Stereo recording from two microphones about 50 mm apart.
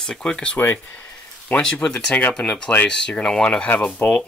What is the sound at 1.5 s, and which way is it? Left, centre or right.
Speech, left.